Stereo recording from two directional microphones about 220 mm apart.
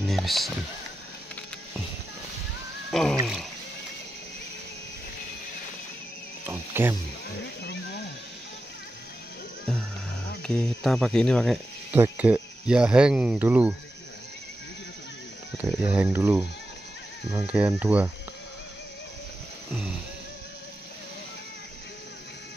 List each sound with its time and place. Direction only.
0.0 s a sound: centre (ahead or behind)
2.9 s speech: centre (ahead or behind)
6.4 s wild animals: 10° right (ahead or behind)
7.3 s a sound: 50° left (ahead or behind)
9.7 s music: centre (ahead or behind)
10.4 s speech: 5° left (ahead or behind)
15.8 s speech: 5° right (ahead or behind)